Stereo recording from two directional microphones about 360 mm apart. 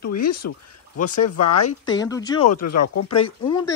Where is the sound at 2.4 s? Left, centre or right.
Left.